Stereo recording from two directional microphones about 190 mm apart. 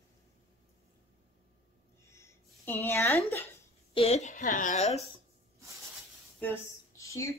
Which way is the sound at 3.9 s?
30° left (ahead or behind).